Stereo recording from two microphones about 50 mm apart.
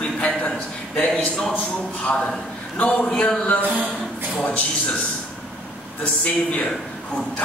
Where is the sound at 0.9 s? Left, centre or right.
Centre.